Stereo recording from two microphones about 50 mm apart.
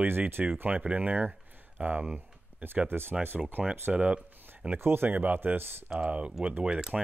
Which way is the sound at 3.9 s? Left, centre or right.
Right.